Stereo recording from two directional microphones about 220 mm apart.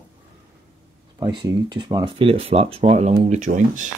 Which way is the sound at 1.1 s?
20° right (ahead or behind).